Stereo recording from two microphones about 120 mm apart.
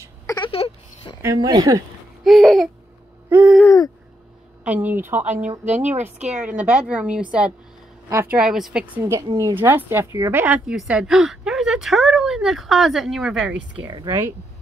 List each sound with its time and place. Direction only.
0.4 s a sound: 50° left (ahead or behind)
1.2 s speech: 30° right (ahead or behind)
2.2 s speech: centre (ahead or behind)
3.3 s a sound: 15° right (ahead or behind)
3.6 s hoot: 30° left (ahead or behind)
4.6 s speech: 15° right (ahead or behind)
8.1 s speech: 20° right (ahead or behind)
8.4 s speech: centre (ahead or behind)
9.0 s speech: 25° right (ahead or behind); by 13.8 s 5° right (ahead or behind)
13.8 s speech: 40° right (ahead or behind)